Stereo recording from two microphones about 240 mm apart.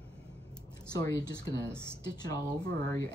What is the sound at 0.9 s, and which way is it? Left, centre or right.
Speech, centre.